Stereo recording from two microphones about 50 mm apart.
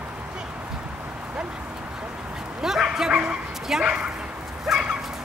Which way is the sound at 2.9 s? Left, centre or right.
Centre.